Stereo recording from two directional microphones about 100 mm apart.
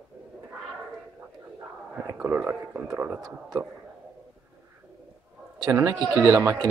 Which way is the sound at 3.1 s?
40° right (ahead or behind).